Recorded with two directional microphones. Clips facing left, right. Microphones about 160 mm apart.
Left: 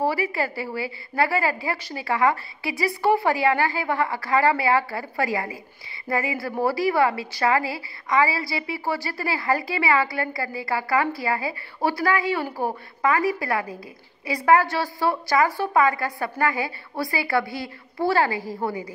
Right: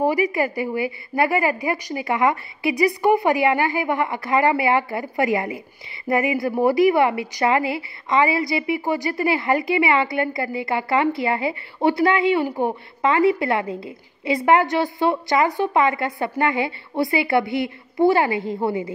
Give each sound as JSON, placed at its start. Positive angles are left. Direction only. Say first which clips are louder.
{"t": 0.0, "sound": "a woman's voice", "louder": "right 4 dB", "side_deg": -15}